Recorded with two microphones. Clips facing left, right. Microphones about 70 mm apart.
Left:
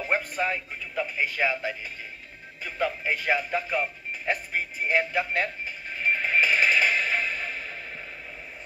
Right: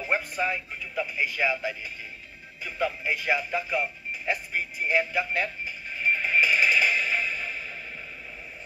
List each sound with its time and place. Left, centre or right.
0.0 s speech: left
4.3 s music: left